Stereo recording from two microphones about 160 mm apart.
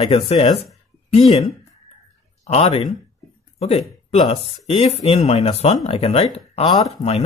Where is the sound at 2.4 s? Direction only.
35° left (ahead or behind).